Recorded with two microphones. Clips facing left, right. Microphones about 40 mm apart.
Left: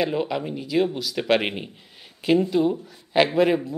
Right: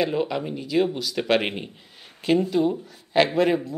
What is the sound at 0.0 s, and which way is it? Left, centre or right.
A man's voice, centre.